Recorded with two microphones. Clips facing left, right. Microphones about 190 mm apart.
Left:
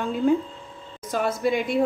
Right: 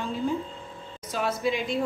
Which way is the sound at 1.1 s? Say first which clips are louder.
Left 4 dB; 50° left (ahead or behind).